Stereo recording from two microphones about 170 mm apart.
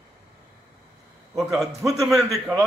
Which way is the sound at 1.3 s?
Centre (ahead or behind).